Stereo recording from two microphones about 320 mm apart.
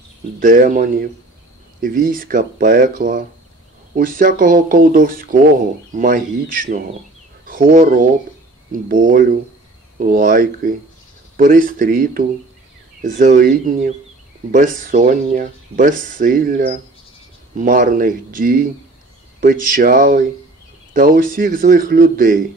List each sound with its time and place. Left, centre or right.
0.4 s speech: right